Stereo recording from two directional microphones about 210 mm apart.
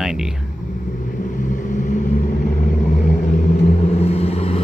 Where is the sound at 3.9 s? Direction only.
30° left (ahead or behind).